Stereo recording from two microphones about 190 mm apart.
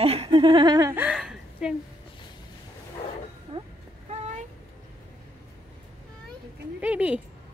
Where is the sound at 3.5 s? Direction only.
25° right (ahead or behind).